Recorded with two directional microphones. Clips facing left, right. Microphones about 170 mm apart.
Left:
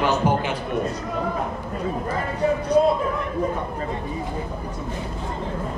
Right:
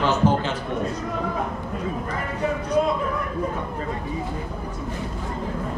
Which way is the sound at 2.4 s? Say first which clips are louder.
Left 4 dB; 35° left (ahead or behind).